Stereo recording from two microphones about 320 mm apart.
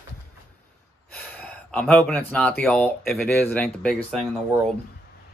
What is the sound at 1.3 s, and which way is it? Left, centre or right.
Speech, centre.